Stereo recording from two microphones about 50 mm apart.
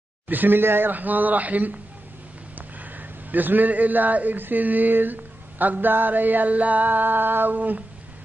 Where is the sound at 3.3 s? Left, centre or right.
Right.